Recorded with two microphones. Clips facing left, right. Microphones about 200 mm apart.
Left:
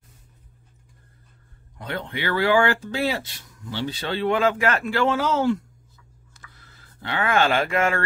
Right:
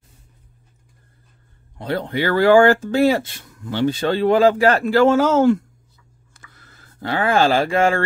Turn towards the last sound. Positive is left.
turn(degrees=-30)  # may be behind; listen again after turning